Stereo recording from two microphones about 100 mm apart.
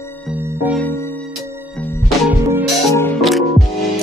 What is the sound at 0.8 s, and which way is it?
Music, 25° left (ahead or behind).